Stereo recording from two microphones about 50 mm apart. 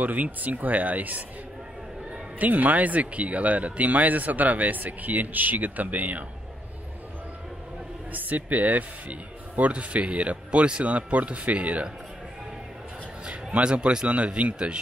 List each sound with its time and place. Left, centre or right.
0.0 s speech: right
2.3 s speech: right
8.1 s speech: right
13.2 s a sound: right
13.7 s speech: centre